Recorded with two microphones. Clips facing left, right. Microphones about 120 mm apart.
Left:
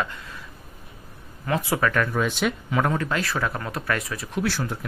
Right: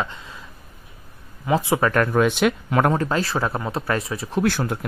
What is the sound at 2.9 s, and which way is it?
Speech, 35° right (ahead or behind).